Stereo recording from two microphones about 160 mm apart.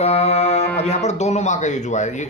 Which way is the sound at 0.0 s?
40° left (ahead or behind).